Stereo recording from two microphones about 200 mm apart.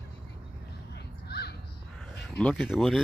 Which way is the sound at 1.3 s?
55° left (ahead or behind).